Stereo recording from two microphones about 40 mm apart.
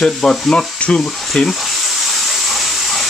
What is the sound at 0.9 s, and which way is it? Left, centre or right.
Speech, left.